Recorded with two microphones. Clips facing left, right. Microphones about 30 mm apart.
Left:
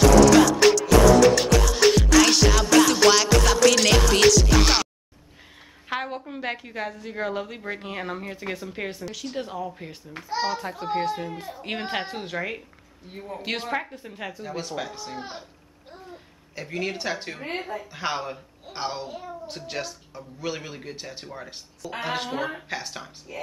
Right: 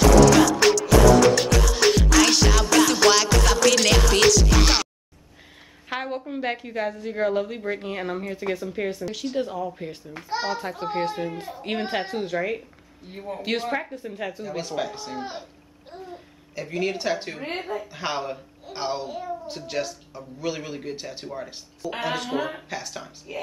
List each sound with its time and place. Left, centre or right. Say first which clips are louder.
0.2 s music: left 1 dB; centre
5.9 s a child's voice: right 1 dB; centre
11.6 s a woman's voice: right 2 dB; centre
21.8 s a woman's voice: right 3 dB; centre
22.3 s a child's voice: right 4 dB; centre
22.7 s a woman's voice: even; centre